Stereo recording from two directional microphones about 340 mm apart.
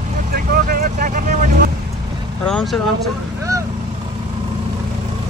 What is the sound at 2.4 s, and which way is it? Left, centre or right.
Speech, centre.